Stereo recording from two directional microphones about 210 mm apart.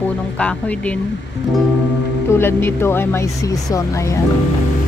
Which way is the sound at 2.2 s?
10° left (ahead or behind).